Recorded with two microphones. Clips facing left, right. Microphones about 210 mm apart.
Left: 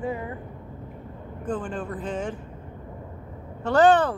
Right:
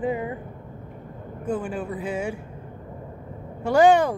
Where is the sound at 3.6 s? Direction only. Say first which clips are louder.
Right 1 dB; 10° right (ahead or behind).